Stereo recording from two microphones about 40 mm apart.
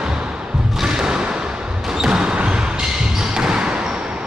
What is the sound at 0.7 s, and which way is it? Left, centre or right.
Thump, centre.